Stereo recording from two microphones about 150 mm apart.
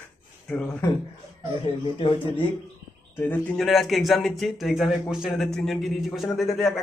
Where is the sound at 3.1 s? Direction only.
15° left (ahead or behind).